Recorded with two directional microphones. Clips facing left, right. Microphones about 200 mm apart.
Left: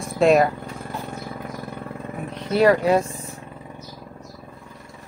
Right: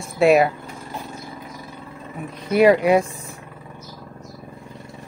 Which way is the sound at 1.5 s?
60° left (ahead or behind).